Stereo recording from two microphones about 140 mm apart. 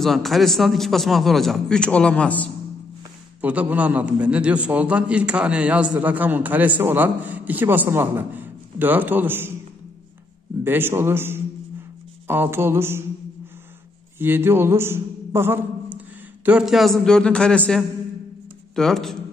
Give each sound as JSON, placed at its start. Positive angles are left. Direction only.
{"t": 0.0, "sound": "a man's voice", "side_deg": 0}
{"t": 3.3, "sound": "a man's voice", "side_deg": -10}
{"t": 10.6, "sound": "a man's voice", "side_deg": -15}
{"t": 14.1, "sound": "a man's voice", "side_deg": -15}
{"t": 16.4, "sound": "a man's voice", "side_deg": -5}